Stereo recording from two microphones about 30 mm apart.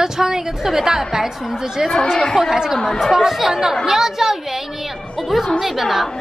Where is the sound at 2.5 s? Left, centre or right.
Centre.